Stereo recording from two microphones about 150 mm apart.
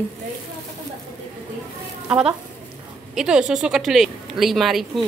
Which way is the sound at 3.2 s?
5° right (ahead or behind).